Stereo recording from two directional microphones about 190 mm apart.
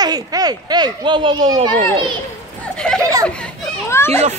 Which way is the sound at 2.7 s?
5° left (ahead or behind).